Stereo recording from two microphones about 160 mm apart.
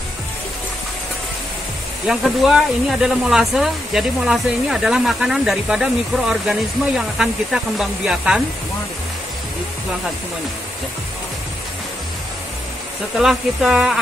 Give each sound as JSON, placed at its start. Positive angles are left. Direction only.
{"t": 2.0, "sound": "speech", "side_deg": -5}
{"t": 13.2, "sound": "speech", "side_deg": -5}